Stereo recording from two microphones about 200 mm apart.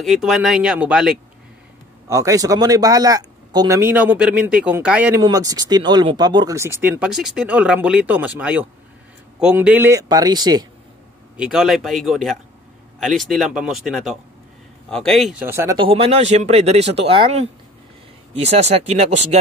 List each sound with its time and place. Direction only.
0.0 s speech: centre (ahead or behind)
2.0 s speech: 15° right (ahead or behind)
5.2 s a man's voice: 20° right (ahead or behind)
11.3 s speech: 5° right (ahead or behind)
15.4 s speech: 15° right (ahead or behind)
15.8 s speech: 25° right (ahead or behind)